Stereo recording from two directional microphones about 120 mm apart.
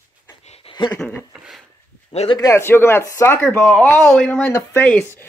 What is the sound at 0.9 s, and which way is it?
Speech, 15° left (ahead or behind).